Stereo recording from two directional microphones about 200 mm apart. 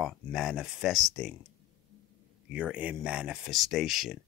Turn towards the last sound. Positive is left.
turn(degrees=0)  # may be behind; listen again after turning